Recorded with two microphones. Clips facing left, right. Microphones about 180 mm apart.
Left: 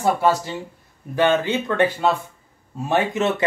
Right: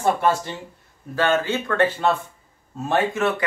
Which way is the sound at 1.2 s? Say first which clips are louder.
Left 2 dB; 20° left (ahead or behind).